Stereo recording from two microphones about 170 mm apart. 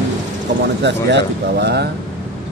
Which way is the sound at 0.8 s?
85° right.